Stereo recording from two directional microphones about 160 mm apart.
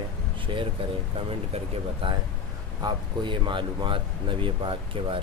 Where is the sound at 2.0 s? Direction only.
35° right (ahead or behind).